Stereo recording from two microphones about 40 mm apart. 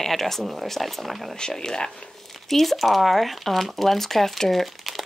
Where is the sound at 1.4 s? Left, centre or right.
Centre.